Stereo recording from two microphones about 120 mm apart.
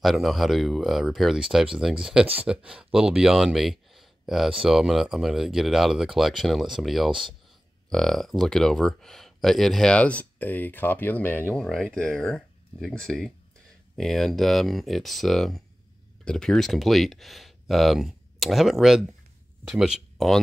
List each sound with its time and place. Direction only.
0.0 s speech: centre (ahead or behind)
7.1 s speech: 45° right (ahead or behind)
7.9 s speech: 5° left (ahead or behind)